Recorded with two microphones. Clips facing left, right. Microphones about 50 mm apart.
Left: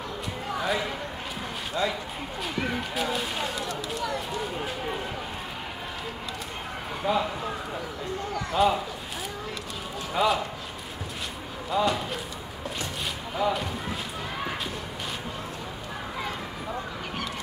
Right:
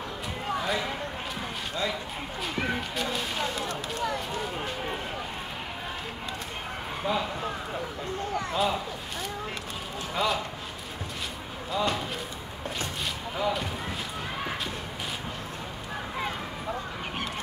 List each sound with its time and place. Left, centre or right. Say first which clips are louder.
1.8 s speech: left 3 dB; left
3.0 s speech: left 2 dB; centre
7.0 s a man's voice: left 3 dB; centre
8.5 s a man's voice: left 5 dB; centre
10.1 s speech: left 4 dB; centre
11.7 s a man's voice: left 3 dB; centre
13.4 s speech: left 2 dB; centre